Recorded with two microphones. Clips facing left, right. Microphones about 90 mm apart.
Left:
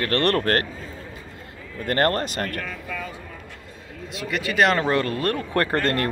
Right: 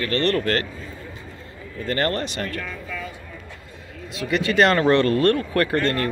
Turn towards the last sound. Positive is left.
turn(degrees=40)  # may be behind; listen again after turning